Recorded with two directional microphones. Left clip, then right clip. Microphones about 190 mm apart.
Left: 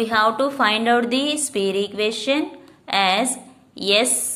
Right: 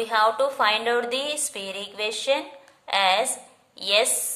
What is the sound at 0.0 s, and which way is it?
A woman's voice, 15° left (ahead or behind).